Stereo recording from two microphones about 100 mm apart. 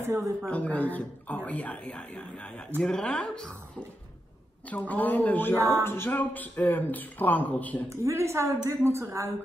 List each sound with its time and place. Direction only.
0.0 s a woman's voice: 25° right (ahead or behind)
0.5 s speech: 15° left (ahead or behind)
4.6 s speech: 15° left (ahead or behind)
5.6 s music: 30° right (ahead or behind)
5.9 s speech: 20° left (ahead or behind)
7.9 s a woman's voice: 30° right (ahead or behind)